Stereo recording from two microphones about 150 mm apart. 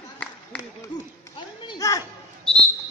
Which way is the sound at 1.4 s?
30° left (ahead or behind).